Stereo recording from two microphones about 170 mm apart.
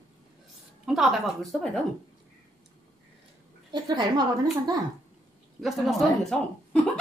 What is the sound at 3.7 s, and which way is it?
Speech, 25° right (ahead or behind).